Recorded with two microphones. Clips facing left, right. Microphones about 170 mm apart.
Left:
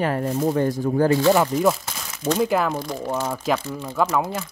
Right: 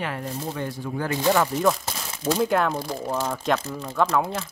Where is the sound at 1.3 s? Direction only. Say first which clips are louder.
Left 3 dB; 10° left (ahead or behind).